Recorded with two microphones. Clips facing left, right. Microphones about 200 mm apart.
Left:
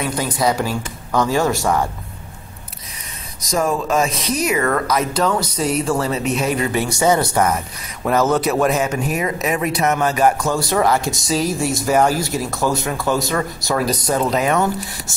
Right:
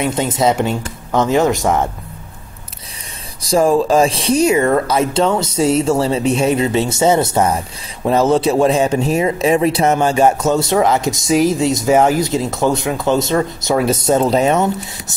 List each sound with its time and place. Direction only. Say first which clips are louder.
0.0 s speech: right 4 dB; 25° right (ahead or behind)
3.3 s speech: right 7 dB; 30° right (ahead or behind)